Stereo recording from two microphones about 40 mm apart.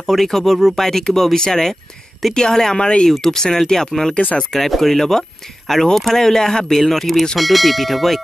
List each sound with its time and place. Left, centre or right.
0.0 s speech: centre
3.1 s speech: centre